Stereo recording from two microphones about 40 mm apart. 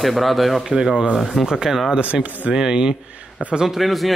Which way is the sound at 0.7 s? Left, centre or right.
Centre.